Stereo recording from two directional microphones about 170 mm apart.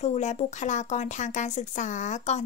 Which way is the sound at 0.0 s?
40° left (ahead or behind).